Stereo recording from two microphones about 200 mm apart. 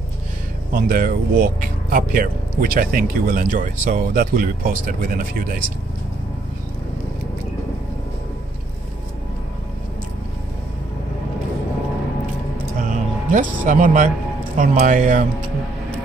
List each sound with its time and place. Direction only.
0.7 s speech: 45° right (ahead or behind)
12.7 s music: 40° right (ahead or behind)
14.6 s speech: 40° right (ahead or behind)